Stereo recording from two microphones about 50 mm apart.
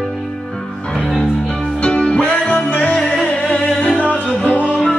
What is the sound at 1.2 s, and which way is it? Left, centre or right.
Music, left.